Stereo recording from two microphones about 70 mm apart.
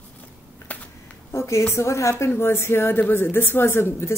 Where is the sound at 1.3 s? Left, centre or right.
Left.